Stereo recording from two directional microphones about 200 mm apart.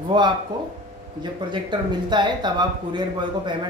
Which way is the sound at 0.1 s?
25° right (ahead or behind).